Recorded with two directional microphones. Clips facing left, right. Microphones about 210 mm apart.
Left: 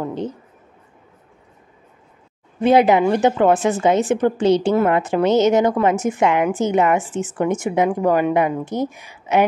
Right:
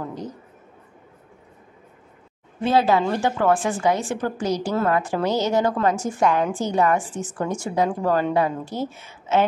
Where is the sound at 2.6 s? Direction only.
20° left (ahead or behind).